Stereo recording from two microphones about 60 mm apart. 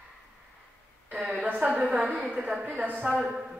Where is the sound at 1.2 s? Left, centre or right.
Centre.